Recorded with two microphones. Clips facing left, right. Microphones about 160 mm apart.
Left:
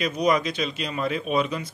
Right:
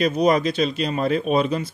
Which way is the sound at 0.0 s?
30° right (ahead or behind).